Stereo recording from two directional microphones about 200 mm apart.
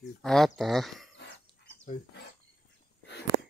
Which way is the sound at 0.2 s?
Centre (ahead or behind).